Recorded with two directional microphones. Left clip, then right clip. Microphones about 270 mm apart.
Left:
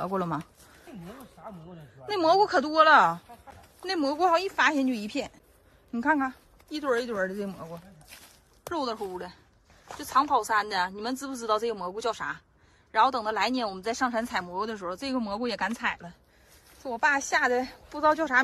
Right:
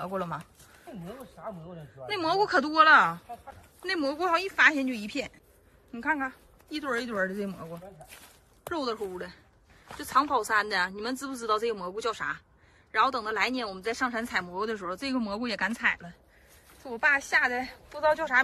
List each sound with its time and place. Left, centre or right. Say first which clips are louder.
0.0 s speech: left 3 dB; left
1.4 s speech: right 5 dB; centre
2.0 s speech: left 4 dB; centre
8.1 s speech: left 1 dB; centre; by 18.4 s left